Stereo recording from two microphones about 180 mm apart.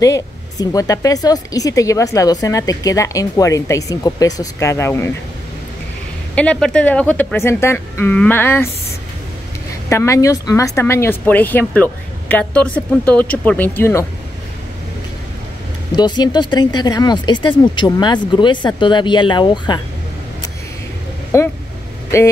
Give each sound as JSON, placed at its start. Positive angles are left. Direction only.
{"t": 0.0, "sound": "speech", "side_deg": 20}
{"t": 6.3, "sound": "speech", "side_deg": 5}
{"t": 9.8, "sound": "speech", "side_deg": 15}
{"t": 16.0, "sound": "speech", "side_deg": 25}
{"t": 21.3, "sound": "speech", "side_deg": 15}